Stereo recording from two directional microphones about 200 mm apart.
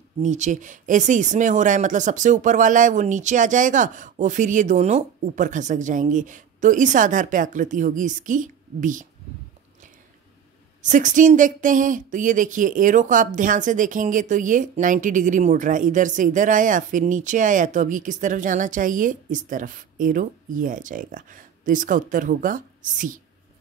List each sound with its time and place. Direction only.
0.2 s speech: 35° right (ahead or behind)
10.8 s speech: 40° right (ahead or behind)